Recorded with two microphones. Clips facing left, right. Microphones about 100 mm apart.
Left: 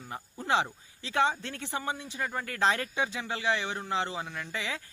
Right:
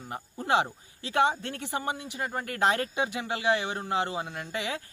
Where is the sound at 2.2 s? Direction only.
35° right (ahead or behind).